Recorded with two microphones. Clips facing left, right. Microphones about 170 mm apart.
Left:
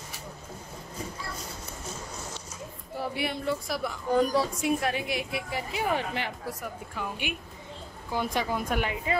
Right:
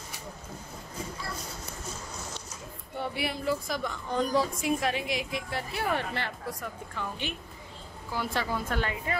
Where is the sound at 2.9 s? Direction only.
Centre (ahead or behind).